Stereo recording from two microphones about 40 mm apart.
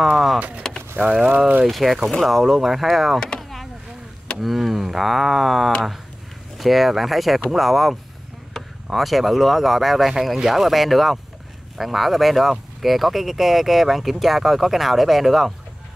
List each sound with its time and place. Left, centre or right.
0.7 s vehicle: centre
1.1 s speech: centre
1.7 s speech: centre
2.0 s speech: centre
2.3 s speech: centre
3.3 s a sound: centre
4.4 s speech: centre